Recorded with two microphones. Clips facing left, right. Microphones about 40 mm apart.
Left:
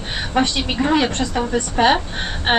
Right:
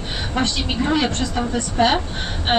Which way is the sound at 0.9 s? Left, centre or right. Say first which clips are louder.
Left 2 dB; left.